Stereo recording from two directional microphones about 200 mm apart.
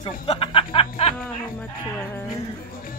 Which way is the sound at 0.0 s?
25° left (ahead or behind).